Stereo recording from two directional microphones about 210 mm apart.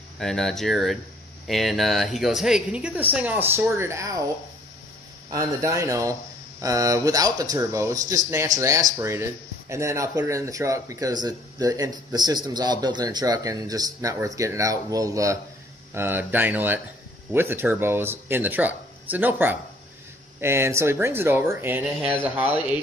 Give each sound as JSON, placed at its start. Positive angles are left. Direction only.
{"t": 0.2, "sound": "speech", "side_deg": 0}
{"t": 5.3, "sound": "speech", "side_deg": -15}